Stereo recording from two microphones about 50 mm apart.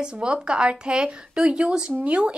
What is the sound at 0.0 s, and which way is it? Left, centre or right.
Speech, centre.